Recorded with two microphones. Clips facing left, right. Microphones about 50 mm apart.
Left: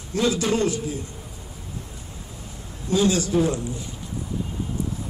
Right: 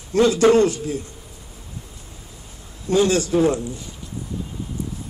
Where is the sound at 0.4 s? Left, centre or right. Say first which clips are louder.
Right 8 dB; right.